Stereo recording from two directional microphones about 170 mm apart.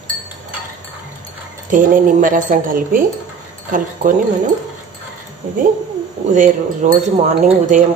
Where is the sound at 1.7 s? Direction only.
50° right (ahead or behind).